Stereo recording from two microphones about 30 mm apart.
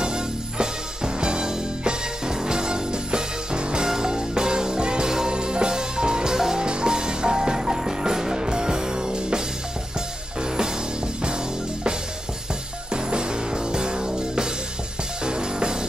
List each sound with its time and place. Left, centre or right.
0.0 s music: right
11.2 s music: right
12.9 s music: right